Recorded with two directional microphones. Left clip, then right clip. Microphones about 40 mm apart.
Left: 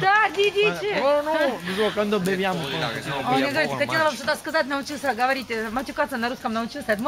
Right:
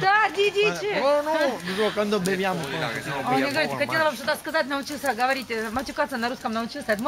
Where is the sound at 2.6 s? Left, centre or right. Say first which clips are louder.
Left 2 dB; left.